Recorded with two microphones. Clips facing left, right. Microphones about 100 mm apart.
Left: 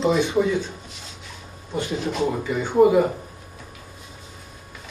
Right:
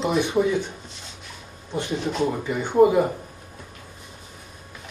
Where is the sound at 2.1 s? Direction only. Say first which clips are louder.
Even; 10° left (ahead or behind).